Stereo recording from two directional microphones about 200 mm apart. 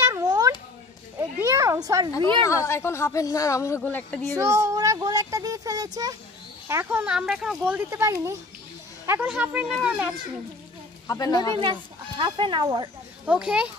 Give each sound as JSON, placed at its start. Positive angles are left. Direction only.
{"t": 0.0, "sound": "cat", "side_deg": -20}
{"t": 1.4, "sound": "a sound", "side_deg": -15}
{"t": 2.4, "sound": "speech", "side_deg": 15}
{"t": 4.4, "sound": "child singing", "side_deg": -15}
{"t": 6.7, "sound": "speech", "side_deg": -10}
{"t": 11.1, "sound": "a woman's voice", "side_deg": 20}
{"t": 12.2, "sound": "speech", "side_deg": -25}
{"t": 13.2, "sound": "a child's voice", "side_deg": -5}